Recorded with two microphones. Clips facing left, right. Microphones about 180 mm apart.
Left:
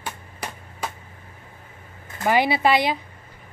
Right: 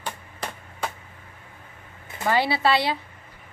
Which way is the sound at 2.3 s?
15° left (ahead or behind).